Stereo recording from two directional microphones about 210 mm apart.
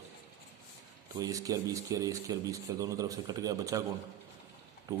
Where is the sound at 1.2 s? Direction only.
15° right (ahead or behind).